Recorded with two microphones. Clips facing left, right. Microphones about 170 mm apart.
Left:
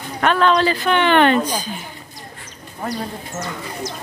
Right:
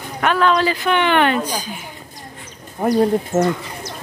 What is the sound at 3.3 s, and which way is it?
Speech, 55° right (ahead or behind).